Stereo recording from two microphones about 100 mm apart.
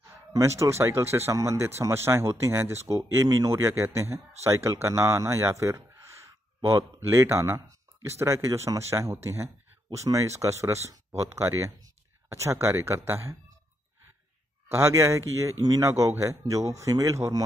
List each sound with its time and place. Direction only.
0.0 s speech: 30° right (ahead or behind)
14.7 s a man's voice: 25° right (ahead or behind)